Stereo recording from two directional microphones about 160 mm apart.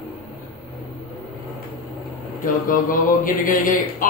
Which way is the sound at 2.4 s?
60° left (ahead or behind).